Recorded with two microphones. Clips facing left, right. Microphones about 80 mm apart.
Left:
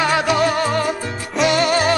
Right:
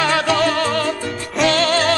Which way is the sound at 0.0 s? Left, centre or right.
Centre.